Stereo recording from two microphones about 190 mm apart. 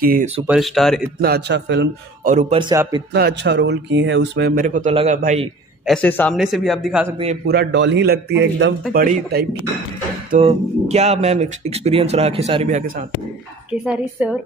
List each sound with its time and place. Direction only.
0.0 s speech: 50° right (ahead or behind)
0.5 s speech: centre (ahead or behind)
1.2 s speech: 60° right (ahead or behind)
2.2 s speech: 35° right (ahead or behind)
2.6 s speech: 20° right (ahead or behind)
3.1 s speech: 60° right (ahead or behind)
4.6 s speech: 45° right (ahead or behind)
5.9 s a man's voice: 5° left (ahead or behind)
7.4 s speech: 65° right (ahead or behind)
8.9 s speech: 55° right (ahead or behind)
10.4 s speech: 35° right (ahead or behind)
13.7 s speech: 5° right (ahead or behind)